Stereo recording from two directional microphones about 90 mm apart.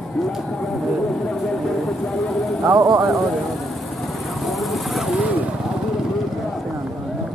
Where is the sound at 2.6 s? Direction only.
40° right (ahead or behind).